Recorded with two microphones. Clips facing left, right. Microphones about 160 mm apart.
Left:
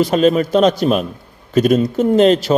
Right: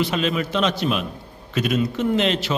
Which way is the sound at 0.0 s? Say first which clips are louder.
Left 9 dB; 40° left (ahead or behind).